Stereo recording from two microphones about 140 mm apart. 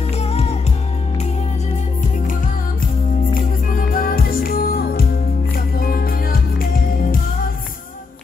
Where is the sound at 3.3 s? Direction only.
85° left.